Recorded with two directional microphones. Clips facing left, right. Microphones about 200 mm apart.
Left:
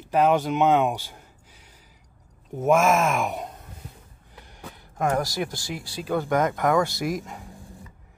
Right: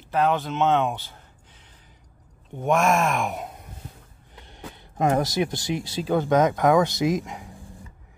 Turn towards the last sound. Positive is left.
turn(degrees=-15)  # may be behind; listen again after turning